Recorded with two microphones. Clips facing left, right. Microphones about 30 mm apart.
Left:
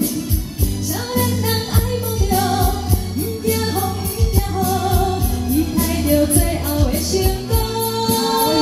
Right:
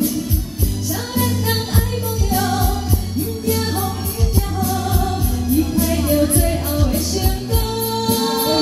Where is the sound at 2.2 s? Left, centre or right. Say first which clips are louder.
Left 2 dB; centre.